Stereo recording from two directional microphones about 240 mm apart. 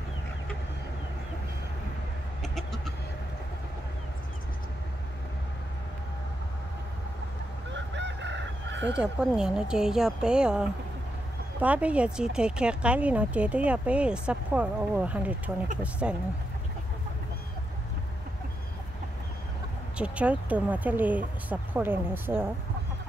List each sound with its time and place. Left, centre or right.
2.4 s chicken: centre
7.7 s fowl: right
8.9 s speech: centre
11.6 s speech: centre
20.0 s speech: centre